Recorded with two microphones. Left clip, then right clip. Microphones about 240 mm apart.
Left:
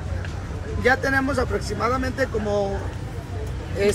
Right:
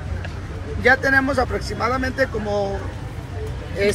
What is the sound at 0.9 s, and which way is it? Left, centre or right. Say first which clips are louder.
Speech: right 6 dB; centre.